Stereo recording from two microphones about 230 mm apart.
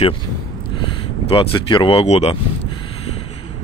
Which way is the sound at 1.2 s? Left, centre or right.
Left.